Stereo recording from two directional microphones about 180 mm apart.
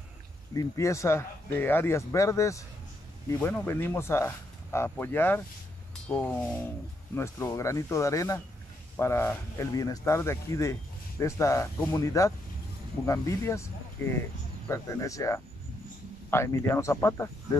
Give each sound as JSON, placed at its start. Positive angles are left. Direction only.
{"t": 0.6, "sound": "speech", "side_deg": 15}